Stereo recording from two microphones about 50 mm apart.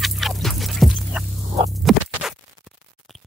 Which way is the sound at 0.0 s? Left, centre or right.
Centre.